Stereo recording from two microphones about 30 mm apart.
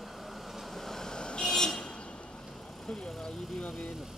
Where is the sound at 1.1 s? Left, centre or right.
Left.